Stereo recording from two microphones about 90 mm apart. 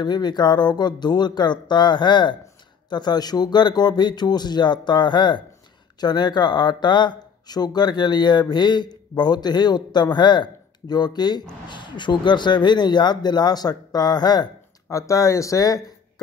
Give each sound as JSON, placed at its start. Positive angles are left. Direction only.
{"t": 0.0, "sound": "speech", "side_deg": 50}